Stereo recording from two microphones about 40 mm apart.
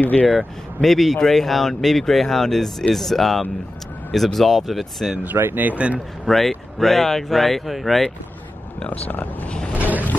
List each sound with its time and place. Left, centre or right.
0.0 s speech: left
0.8 s speech: centre
5.2 s speech: right
5.8 s speech: right
6.2 s speech: centre
9.1 s speech: left
9.8 s vehicle: right